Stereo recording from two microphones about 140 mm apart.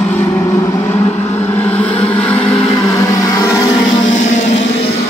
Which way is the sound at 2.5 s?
25° left (ahead or behind).